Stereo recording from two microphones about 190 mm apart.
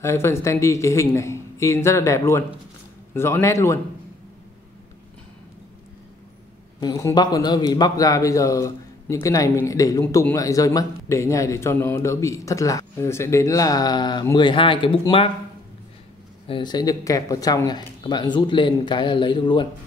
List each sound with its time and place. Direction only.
0.0 s a man's voice: 15° left (ahead or behind)
6.8 s a man's voice: 20° left (ahead or behind)
16.4 s speech: 25° left (ahead or behind)